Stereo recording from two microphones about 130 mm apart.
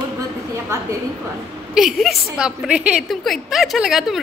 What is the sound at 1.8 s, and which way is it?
A woman's voice, centre (ahead or behind).